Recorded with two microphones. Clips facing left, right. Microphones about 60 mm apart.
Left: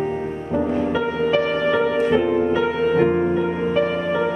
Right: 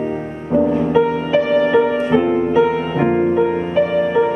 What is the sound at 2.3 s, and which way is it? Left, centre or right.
Music, centre.